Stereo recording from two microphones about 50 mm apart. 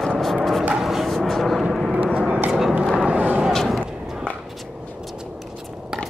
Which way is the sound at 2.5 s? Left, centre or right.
Centre.